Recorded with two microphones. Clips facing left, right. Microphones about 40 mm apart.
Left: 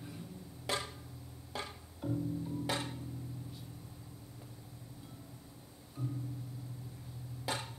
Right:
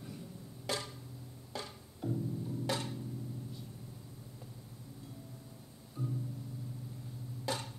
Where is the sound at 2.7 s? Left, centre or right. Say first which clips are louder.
Right 1 dB; centre.